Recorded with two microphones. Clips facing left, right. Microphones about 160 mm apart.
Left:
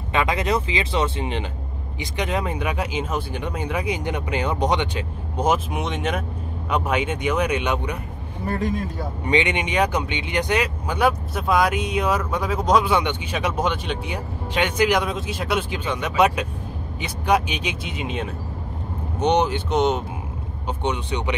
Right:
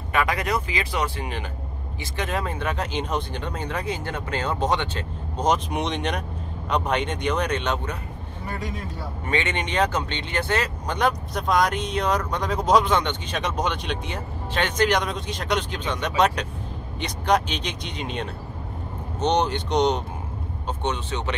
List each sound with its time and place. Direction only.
0.1 s speech: 20° left (ahead or behind)
9.2 s speech: 15° left (ahead or behind)